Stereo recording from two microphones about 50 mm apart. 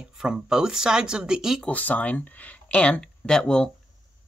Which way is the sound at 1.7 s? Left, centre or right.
Left.